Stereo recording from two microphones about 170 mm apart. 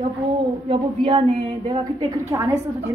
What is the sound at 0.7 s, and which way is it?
A woman's voice, 30° right (ahead or behind).